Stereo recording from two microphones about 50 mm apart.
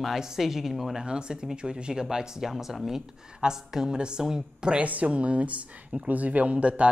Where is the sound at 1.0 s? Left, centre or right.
Centre.